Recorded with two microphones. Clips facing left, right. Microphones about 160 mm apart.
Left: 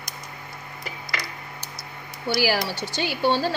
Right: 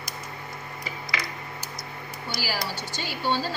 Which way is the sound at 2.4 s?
70° left (ahead or behind).